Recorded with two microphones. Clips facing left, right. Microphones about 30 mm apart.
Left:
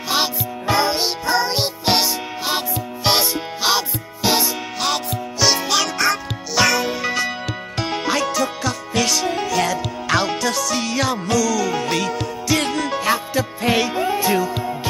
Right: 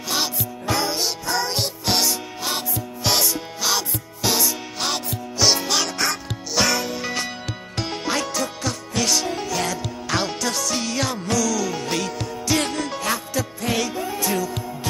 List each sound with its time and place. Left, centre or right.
0.1 s music: left
4.7 s music: centre
12.9 s music: centre